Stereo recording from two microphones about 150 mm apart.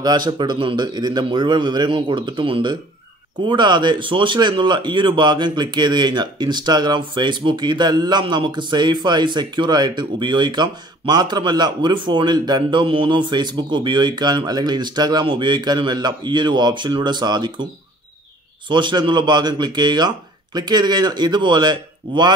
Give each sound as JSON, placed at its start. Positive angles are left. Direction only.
{"t": 0.0, "sound": "speech", "side_deg": -30}
{"t": 18.7, "sound": "speech", "side_deg": -30}